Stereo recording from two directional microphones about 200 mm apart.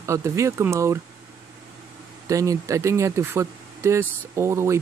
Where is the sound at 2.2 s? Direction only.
15° right (ahead or behind).